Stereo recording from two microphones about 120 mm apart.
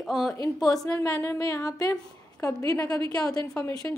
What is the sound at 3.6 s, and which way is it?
Speech, 30° left (ahead or behind).